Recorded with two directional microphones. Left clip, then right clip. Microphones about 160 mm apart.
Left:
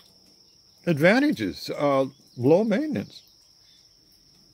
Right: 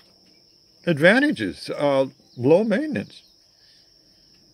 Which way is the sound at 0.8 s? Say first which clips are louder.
Right 3 dB; 10° left (ahead or behind).